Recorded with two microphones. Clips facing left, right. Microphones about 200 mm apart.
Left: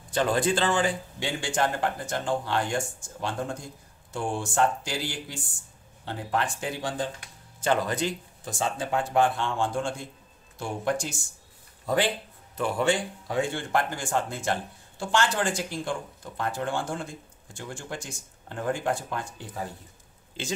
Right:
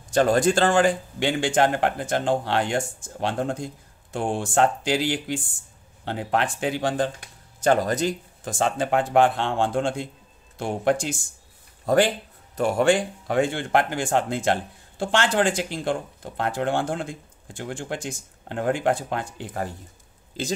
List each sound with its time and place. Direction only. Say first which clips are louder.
0.1 s speech: right 6 dB; 45° right (ahead or behind)
1.2 s speech: right 7 dB; 65° right (ahead or behind)
7.6 s speech: right 5 dB; 40° right (ahead or behind)
8.5 s speech: right 5 dB; 70° right (ahead or behind)
11.8 s speech: right 6 dB; 45° right (ahead or behind)
12.8 s speech: right 6 dB; 90° right
13.4 s speech: right 5 dB; 65° right (ahead or behind)
20.4 s speech: right 6 dB; 40° right (ahead or behind)